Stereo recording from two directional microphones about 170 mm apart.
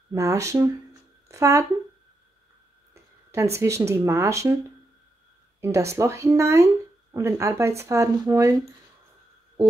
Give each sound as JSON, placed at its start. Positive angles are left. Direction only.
{"t": 0.1, "sound": "speech", "side_deg": -20}
{"t": 2.9, "sound": "a sound", "side_deg": -15}
{"t": 3.5, "sound": "speech", "side_deg": -15}
{"t": 5.6, "sound": "speech", "side_deg": -15}